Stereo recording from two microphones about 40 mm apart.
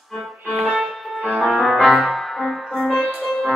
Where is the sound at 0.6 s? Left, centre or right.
Right.